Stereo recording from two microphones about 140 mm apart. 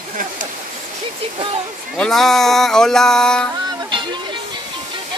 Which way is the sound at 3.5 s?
30° right (ahead or behind).